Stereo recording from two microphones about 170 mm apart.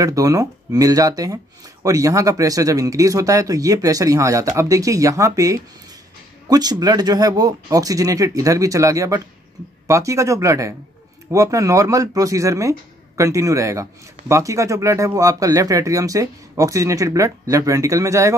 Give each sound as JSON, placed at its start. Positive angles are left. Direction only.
{"t": 0.0, "sound": "speech", "side_deg": -20}